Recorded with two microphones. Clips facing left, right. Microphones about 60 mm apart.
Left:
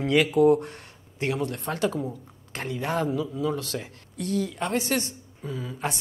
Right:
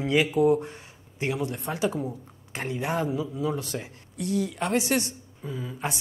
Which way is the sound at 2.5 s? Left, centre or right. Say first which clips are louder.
Even; right.